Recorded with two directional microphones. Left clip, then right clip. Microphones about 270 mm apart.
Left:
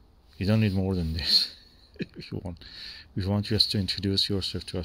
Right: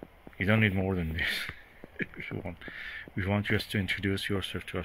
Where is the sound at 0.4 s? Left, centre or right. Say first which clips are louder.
Right 1 dB; left.